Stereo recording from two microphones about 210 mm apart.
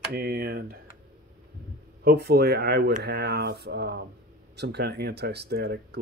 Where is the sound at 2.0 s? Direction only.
50° right (ahead or behind).